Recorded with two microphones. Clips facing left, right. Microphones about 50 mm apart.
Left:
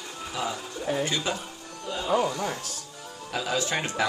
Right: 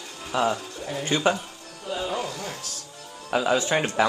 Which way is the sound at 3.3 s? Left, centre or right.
Right.